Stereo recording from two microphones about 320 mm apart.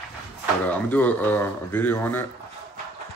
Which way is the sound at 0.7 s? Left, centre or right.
Centre.